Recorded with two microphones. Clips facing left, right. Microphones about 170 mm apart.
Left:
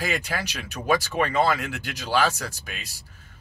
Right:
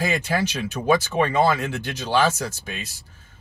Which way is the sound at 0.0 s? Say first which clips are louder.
Right 5 dB; 25° right (ahead or behind).